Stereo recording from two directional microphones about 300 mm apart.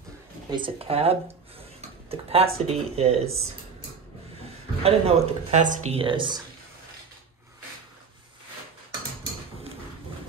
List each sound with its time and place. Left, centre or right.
0.5 s speech: centre
4.8 s speech: centre